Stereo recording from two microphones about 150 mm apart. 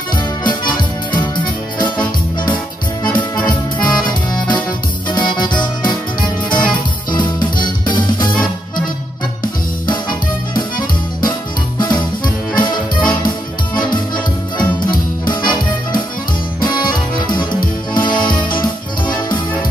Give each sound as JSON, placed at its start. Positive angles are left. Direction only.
{"t": 1.1, "sound": "music", "side_deg": 30}
{"t": 3.8, "sound": "accordion", "side_deg": 30}
{"t": 5.1, "sound": "music", "side_deg": 30}
{"t": 9.8, "sound": "music", "side_deg": 30}
{"t": 12.5, "sound": "accordion", "side_deg": 30}
{"t": 13.7, "sound": "music", "side_deg": 30}